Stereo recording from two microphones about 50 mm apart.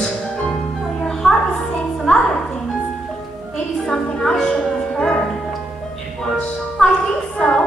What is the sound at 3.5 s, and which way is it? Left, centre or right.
Music, centre.